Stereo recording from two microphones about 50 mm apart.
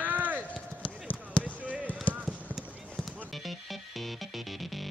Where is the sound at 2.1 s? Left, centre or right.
Left.